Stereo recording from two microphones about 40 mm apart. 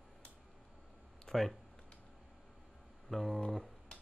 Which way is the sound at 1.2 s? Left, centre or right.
Centre.